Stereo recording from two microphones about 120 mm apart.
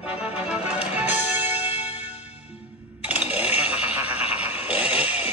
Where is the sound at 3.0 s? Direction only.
10° right (ahead or behind).